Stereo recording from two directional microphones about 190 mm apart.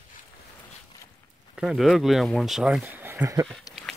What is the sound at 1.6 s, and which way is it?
Speech, centre (ahead or behind).